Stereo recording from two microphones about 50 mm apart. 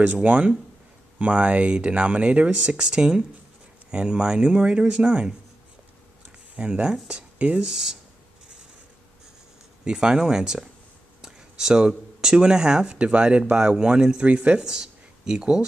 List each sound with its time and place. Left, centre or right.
0.0 s speech: right
6.5 s speech: right
7.6 s speech: centre
9.8 s speech: centre
14.7 s speech: centre